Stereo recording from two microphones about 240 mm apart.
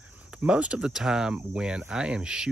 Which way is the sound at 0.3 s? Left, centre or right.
Centre.